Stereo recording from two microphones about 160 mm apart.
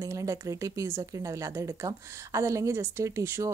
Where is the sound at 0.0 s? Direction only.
20° right (ahead or behind).